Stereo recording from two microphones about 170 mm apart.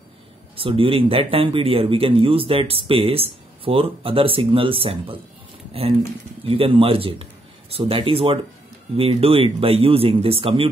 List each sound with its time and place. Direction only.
0.6 s speech: 30° right (ahead or behind)